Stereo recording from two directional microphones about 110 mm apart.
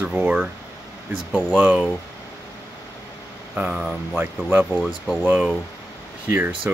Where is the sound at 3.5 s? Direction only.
10° right (ahead or behind).